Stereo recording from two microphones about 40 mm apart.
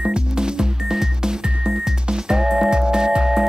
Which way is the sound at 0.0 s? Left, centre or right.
Right.